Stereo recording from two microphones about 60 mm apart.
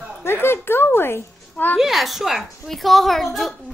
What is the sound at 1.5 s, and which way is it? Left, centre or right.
Speech, left.